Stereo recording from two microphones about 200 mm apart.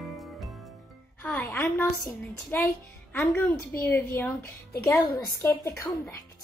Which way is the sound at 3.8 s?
10° left (ahead or behind).